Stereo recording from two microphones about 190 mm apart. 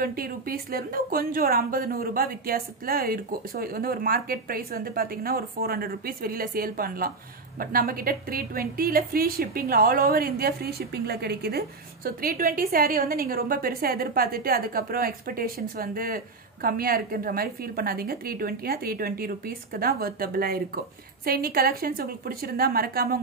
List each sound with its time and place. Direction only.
0.0 s a woman's voice: 50° right (ahead or behind)